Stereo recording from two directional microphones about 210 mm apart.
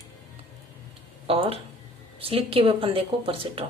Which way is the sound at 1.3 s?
25° right (ahead or behind).